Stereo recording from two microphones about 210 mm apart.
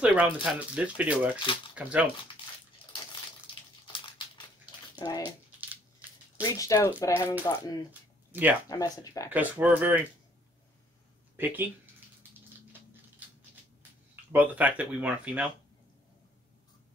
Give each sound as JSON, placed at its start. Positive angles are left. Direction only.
{"t": 0.0, "sound": "speech", "side_deg": -5}
{"t": 4.9, "sound": "bathtub", "side_deg": 20}
{"t": 5.2, "sound": "a sound", "side_deg": -10}
{"t": 6.5, "sound": "speech", "side_deg": 15}
{"t": 8.3, "sound": "speech", "side_deg": -10}
{"t": 8.6, "sound": "speech", "side_deg": 15}
{"t": 9.3, "sound": "speech", "side_deg": -10}
{"t": 11.3, "sound": "a sound", "side_deg": -10}
{"t": 14.3, "sound": "speech", "side_deg": -5}